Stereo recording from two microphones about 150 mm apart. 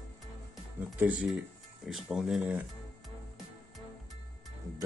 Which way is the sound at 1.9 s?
5° right (ahead or behind).